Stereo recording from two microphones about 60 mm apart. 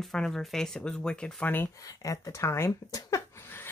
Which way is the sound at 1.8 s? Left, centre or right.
Left.